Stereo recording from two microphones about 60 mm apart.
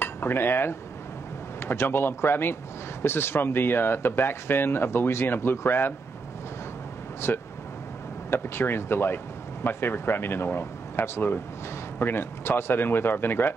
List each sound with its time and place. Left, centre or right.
0.0 s cutlery: left
1.6 s speech: left
7.2 s speech: left